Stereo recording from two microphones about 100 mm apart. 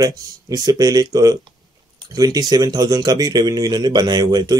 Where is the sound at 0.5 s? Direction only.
40° right (ahead or behind).